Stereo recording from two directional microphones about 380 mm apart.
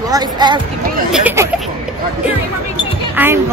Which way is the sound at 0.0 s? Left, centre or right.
Centre.